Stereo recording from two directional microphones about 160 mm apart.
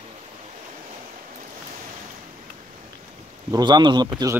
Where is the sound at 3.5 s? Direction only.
25° right (ahead or behind).